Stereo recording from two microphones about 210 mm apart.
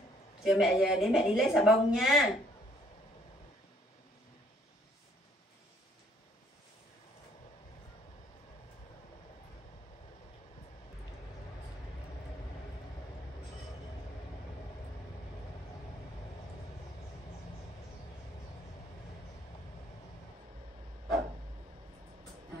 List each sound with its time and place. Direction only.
0.4 s a woman's voice: centre (ahead or behind)